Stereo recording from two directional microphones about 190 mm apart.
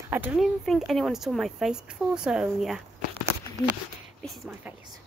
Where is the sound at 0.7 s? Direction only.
Centre (ahead or behind).